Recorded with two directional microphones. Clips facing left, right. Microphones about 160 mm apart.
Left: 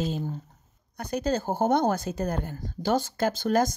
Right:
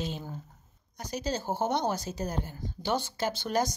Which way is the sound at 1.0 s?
55° left (ahead or behind).